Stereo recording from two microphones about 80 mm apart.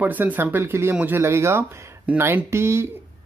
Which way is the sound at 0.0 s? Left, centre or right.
Right.